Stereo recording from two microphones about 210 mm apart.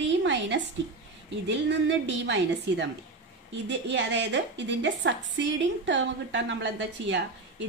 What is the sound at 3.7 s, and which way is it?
A woman's voice, 60° right (ahead or behind).